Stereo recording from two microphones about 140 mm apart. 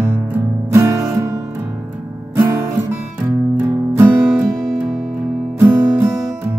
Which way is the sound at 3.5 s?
15° right (ahead or behind).